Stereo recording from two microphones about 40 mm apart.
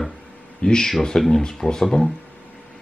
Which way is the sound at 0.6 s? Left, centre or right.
Left.